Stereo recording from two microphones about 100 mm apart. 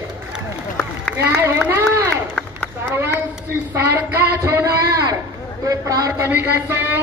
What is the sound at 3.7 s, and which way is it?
Speech, 20° right (ahead or behind).